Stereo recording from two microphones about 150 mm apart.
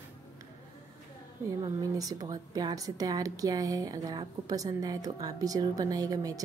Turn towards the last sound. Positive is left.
turn(degrees=-25)  # may be behind; listen again after turning